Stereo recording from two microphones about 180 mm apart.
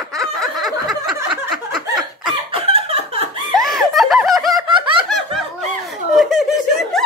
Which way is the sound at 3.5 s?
Centre (ahead or behind).